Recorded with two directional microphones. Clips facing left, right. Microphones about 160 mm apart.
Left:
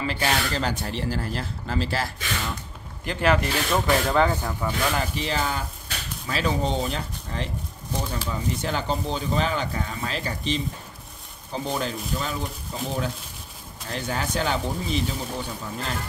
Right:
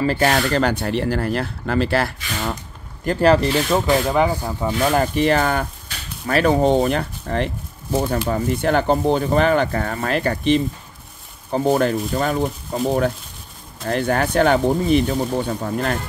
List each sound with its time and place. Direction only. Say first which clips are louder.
0.0 s speech: right 8 dB; 45° right (ahead or behind); by 2.5 s 65° right (ahead or behind)
3.1 s speech: right 7 dB; 35° right (ahead or behind)
3.7 s speech: right 2 dB; 15° right (ahead or behind)
4.9 s speech: right 10 dB; 55° right (ahead or behind)